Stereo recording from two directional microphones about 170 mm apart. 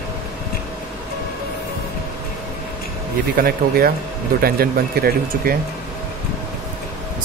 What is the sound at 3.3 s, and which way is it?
Speech, 60° right (ahead or behind).